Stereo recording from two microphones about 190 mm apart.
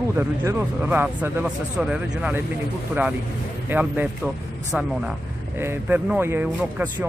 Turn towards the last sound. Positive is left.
turn(degrees=-10)  # may be behind; listen again after turning